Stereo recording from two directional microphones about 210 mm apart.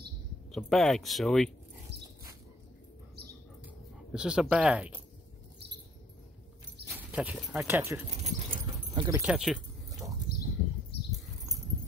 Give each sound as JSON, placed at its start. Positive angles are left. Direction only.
{"t": 0.5, "sound": "speech", "side_deg": 0}
{"t": 1.9, "sound": "dog", "side_deg": -55}
{"t": 4.1, "sound": "speech", "side_deg": -5}
{"t": 6.9, "sound": "speech", "side_deg": -5}
{"t": 8.2, "sound": "dog", "side_deg": -30}
{"t": 9.2, "sound": "speech", "side_deg": -5}
{"t": 10.3, "sound": "a sound", "side_deg": 45}